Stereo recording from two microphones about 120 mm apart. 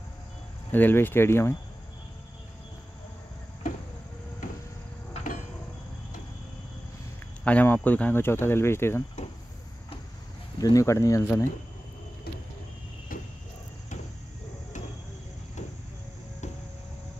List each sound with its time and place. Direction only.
0.7 s speech: 15° left (ahead or behind)
7.4 s speech: 15° left (ahead or behind)
10.6 s speech: 30° left (ahead or behind)